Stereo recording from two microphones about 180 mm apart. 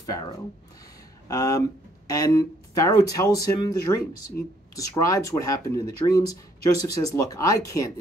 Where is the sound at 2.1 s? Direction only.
20° left (ahead or behind).